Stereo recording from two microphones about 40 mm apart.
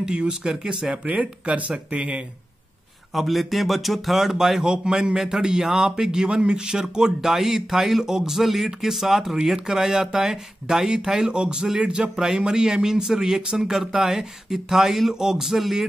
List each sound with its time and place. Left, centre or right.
0.0 s speech: centre
1.0 s speech: right
3.2 s speech: centre
11.8 s speech: right; by 15.9 s centre